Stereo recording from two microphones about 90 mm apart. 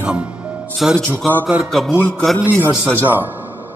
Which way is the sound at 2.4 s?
25° right (ahead or behind).